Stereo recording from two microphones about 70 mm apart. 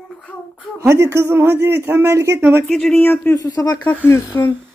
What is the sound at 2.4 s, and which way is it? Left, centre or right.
Speech, right.